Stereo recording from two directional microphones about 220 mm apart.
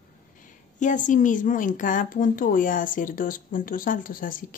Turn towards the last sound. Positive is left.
turn(degrees=40)  # may be behind; listen again after turning